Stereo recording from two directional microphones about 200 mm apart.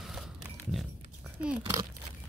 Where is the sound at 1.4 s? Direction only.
15° right (ahead or behind).